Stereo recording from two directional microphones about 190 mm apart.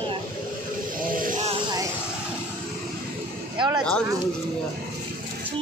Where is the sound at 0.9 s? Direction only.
45° right (ahead or behind).